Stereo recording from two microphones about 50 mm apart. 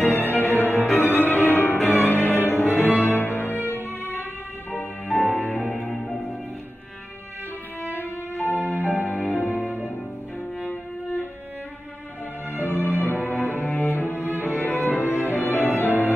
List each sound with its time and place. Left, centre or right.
0.0 s music: left
5.2 s music: left
8.0 s music: left
12.5 s cello: left
14.4 s music: left